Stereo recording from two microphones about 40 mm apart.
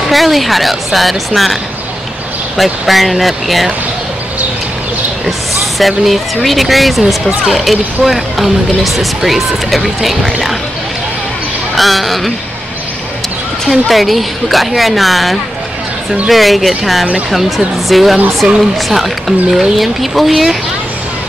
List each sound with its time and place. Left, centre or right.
0.1 s speech: centre
5.8 s speech: centre
11.7 s speech: centre
13.7 s speech: centre
18.4 s speech: right
18.8 s speech: centre